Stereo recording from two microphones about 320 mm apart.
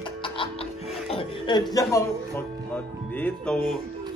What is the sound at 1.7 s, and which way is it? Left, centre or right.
Speech, centre.